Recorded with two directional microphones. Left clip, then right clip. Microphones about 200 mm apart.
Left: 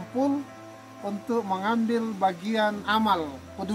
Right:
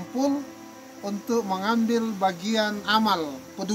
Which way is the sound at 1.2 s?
Centre (ahead or behind).